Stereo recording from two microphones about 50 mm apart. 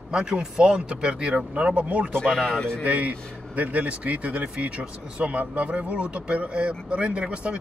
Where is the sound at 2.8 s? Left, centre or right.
Right.